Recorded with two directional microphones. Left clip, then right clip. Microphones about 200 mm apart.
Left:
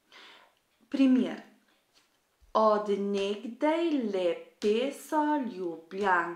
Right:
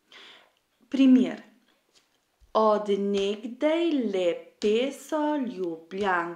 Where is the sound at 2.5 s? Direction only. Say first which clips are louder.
Right 2 dB; 40° right (ahead or behind).